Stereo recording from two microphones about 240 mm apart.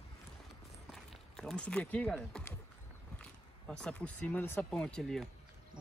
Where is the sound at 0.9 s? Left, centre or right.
Centre.